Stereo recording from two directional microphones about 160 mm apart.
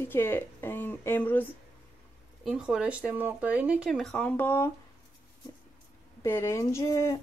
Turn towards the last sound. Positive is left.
turn(degrees=20)  # may be behind; listen again after turning